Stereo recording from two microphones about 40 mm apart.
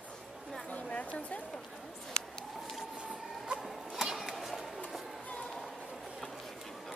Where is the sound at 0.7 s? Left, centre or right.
Left.